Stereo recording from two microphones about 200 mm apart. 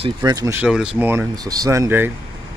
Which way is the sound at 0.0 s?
20° right (ahead or behind).